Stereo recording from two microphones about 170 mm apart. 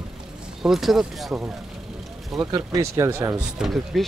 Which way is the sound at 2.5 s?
20° right (ahead or behind).